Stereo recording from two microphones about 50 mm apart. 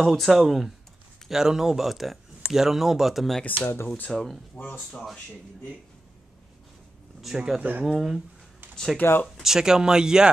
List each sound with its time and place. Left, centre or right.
0.0 s speech: centre
3.4 s speech: left
4.1 s speech: centre
7.3 s speech: centre
9.0 s speech: left
9.4 s speech: centre